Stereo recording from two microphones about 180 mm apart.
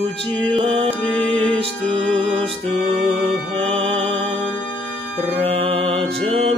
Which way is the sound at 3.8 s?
30° right (ahead or behind).